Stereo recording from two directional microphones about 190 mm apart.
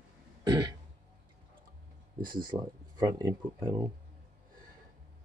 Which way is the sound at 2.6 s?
20° right (ahead or behind).